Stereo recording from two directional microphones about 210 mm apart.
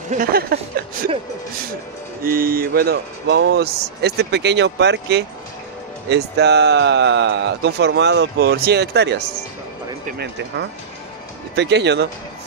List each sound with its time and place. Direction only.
0.1 s speech: 45° right (ahead or behind)
2.2 s speech: 45° right (ahead or behind)